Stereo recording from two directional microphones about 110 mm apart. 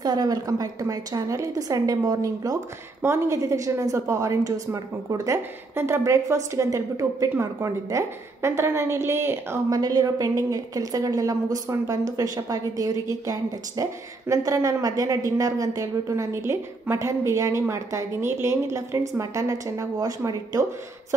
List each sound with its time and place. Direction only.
0.0 s a woman's voice: 35° right (ahead or behind); by 9.6 s 20° right (ahead or behind)
9.7 s a woman's voice: 35° right (ahead or behind)